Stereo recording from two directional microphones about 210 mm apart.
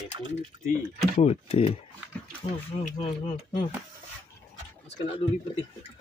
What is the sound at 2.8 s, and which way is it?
Speech, 35° left (ahead or behind).